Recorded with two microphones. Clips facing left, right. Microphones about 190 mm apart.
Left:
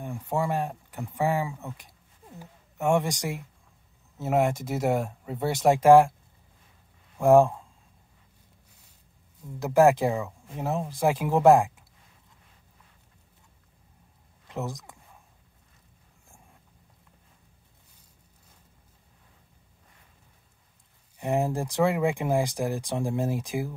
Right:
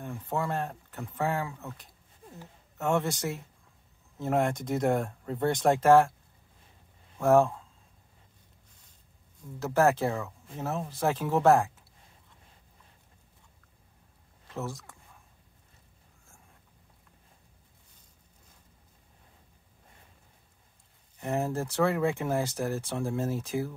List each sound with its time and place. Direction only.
0.0 s speech: 10° left (ahead or behind)
7.2 s speech: 15° left (ahead or behind)
9.6 s speech: 15° left (ahead or behind)
14.5 s speech: 15° left (ahead or behind)
21.2 s speech: 15° left (ahead or behind)